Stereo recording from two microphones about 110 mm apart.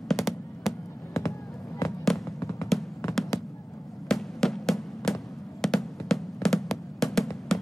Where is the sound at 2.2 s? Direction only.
25° left (ahead or behind).